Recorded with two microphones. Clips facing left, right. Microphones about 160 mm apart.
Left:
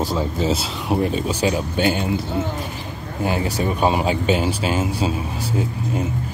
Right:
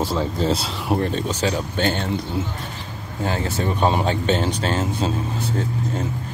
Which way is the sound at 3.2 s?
15° left (ahead or behind).